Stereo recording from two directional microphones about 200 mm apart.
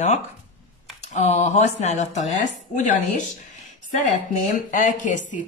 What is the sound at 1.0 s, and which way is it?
A woman's voice, 35° left (ahead or behind).